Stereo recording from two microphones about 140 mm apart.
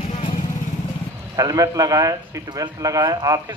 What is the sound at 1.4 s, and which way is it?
A man's voice, 25° right (ahead or behind).